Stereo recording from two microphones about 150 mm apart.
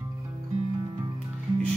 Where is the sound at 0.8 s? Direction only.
25° right (ahead or behind).